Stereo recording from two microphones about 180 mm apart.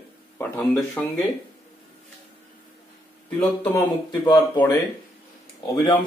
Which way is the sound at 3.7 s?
25° left (ahead or behind).